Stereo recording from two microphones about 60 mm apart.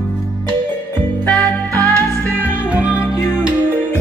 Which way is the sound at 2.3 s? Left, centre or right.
Right.